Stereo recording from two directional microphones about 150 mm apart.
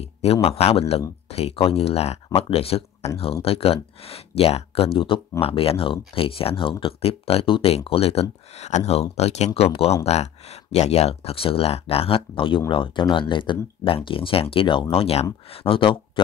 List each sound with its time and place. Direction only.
0.0 s speech: 40° left (ahead or behind)